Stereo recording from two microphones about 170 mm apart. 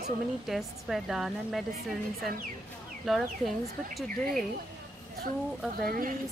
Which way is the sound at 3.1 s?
Centre (ahead or behind).